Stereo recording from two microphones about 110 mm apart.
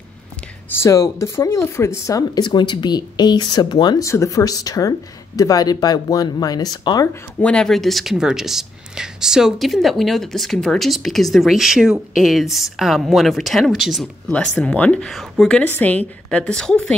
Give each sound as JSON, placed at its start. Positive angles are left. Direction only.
{"t": 0.7, "sound": "speech", "side_deg": 25}
{"t": 7.4, "sound": "speech", "side_deg": 5}
{"t": 14.3, "sound": "speech", "side_deg": 10}